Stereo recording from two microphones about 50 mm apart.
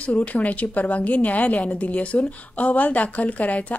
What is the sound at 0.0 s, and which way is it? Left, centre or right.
A woman's voice, left.